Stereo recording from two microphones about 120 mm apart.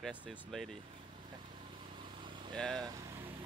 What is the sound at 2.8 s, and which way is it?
Vehicle, 30° right (ahead or behind).